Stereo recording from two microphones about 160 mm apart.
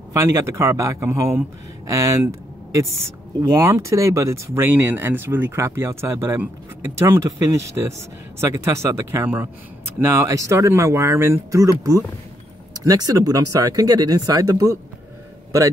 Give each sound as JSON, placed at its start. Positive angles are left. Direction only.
{"t": 0.1, "sound": "speech", "side_deg": -15}